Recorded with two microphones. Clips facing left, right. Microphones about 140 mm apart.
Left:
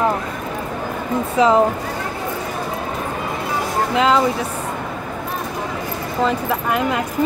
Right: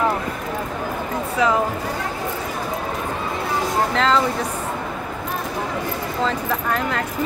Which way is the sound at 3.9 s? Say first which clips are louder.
Left 5 dB; 10° left (ahead or behind).